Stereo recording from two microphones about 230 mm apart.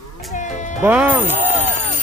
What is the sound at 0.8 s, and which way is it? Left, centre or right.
Speech, centre.